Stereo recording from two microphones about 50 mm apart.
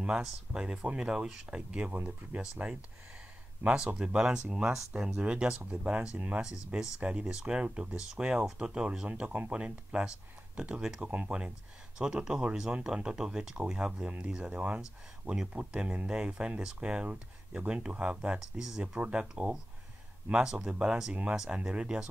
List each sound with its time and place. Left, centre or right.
0.5 s speech: centre
3.6 s speech: centre
6.4 s speech: centre
11.1 s speech: right
12.0 s speech: centre
18.4 s speech: centre
18.9 s speech: right